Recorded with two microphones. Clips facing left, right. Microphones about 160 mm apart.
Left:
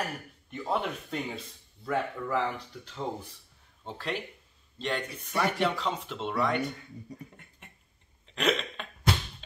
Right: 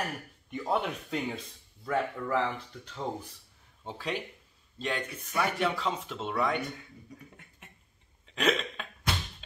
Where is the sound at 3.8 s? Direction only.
10° right (ahead or behind).